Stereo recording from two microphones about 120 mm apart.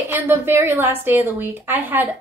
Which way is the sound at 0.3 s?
20° right (ahead or behind).